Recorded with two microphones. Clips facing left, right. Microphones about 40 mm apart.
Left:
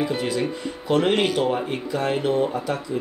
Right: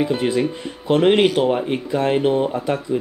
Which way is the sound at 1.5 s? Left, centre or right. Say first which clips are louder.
Right 4 dB; right.